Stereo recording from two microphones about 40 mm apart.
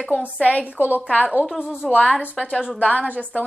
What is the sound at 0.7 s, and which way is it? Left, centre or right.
Speech, right.